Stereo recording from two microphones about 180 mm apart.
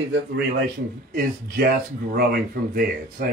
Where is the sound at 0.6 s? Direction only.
60° right (ahead or behind).